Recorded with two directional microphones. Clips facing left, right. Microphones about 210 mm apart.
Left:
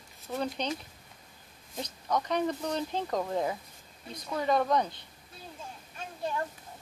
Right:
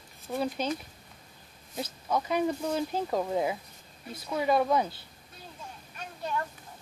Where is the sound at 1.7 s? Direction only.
5° right (ahead or behind).